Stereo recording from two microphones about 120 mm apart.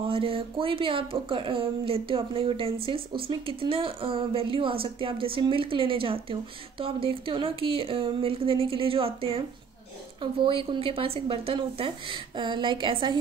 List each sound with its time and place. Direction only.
0.0 s speech: 50° right (ahead or behind)